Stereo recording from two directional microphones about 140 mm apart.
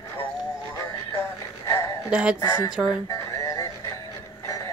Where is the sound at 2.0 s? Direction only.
5° right (ahead or behind).